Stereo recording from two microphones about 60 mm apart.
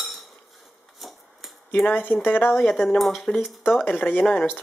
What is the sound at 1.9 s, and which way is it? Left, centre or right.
Speech, left.